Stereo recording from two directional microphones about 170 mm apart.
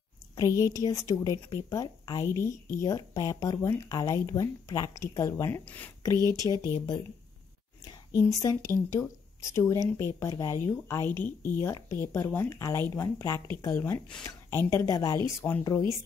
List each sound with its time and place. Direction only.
0.4 s a woman's voice: 20° left (ahead or behind)
6.1 s speech: 20° right (ahead or behind)
6.6 s a woman's voice: 25° left (ahead or behind)
8.2 s a woman's voice: 20° left (ahead or behind)